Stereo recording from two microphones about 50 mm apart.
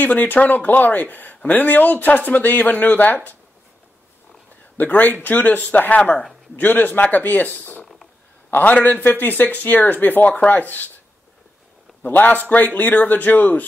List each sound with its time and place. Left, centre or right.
0.0 s speech: left
4.7 s speech: left
7.8 s a sound: centre
8.5 s speech: left
12.0 s speech: left